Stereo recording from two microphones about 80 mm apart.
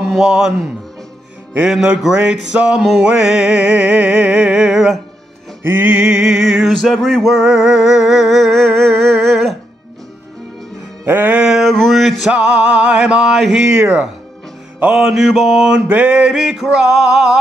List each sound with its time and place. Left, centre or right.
0.0 s speech: centre
1.7 s male singing: centre
5.6 s music: right
5.9 s male singing: centre
11.1 s music: right
11.4 s mantra: centre
11.7 s male singing: centre
15.0 s male singing: centre